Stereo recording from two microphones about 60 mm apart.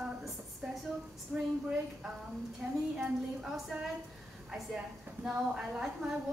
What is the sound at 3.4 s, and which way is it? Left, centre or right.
Speech, centre.